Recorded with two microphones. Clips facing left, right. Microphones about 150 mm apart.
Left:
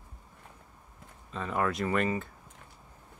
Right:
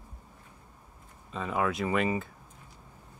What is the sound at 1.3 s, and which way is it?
Speech, 5° right (ahead or behind).